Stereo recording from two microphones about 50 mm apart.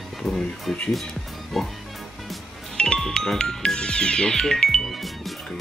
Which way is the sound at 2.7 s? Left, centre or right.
Centre.